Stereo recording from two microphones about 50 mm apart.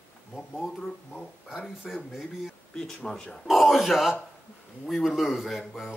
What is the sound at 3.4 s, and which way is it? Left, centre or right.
Speech, centre.